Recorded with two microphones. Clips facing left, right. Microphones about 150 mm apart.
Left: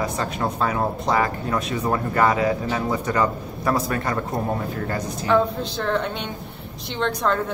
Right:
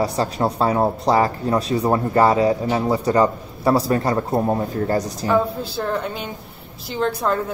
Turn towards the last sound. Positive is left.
turn(degrees=-5)  # may be behind; listen again after turning